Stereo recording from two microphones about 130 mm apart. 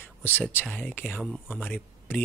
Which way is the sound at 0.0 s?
15° left (ahead or behind).